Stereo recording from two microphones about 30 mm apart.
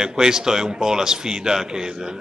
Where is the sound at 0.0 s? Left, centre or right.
Right.